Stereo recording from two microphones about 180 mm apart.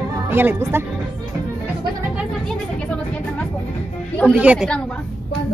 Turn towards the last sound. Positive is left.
turn(degrees=-5)  # may be behind; listen again after turning